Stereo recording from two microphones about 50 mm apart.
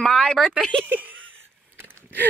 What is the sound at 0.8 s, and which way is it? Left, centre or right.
Speech, right.